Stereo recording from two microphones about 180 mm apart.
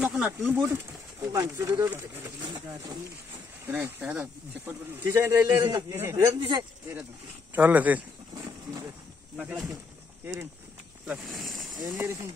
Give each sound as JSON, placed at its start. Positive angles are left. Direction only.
{"t": 0.0, "sound": "speech", "side_deg": -5}
{"t": 3.6, "sound": "speech", "side_deg": -10}
{"t": 8.4, "sound": "a sound", "side_deg": -20}
{"t": 9.4, "sound": "speech", "side_deg": -5}
{"t": 11.1, "sound": "speech", "side_deg": 0}
{"t": 11.9, "sound": "speech", "side_deg": -10}